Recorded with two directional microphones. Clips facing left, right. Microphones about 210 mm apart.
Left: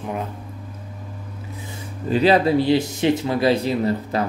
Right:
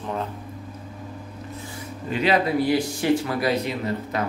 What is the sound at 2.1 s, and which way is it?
Speech, 35° left (ahead or behind).